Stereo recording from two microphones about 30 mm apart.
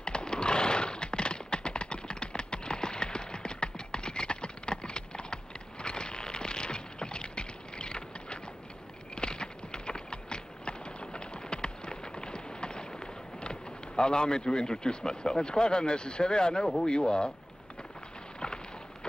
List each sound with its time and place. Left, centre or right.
0.0 s horse: left
16.9 s speech: left
18.4 s a sound: left